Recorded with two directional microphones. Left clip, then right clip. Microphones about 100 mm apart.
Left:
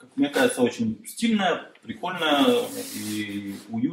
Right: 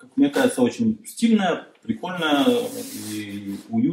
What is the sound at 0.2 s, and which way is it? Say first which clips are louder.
Speech: right 2 dB; centre (ahead or behind).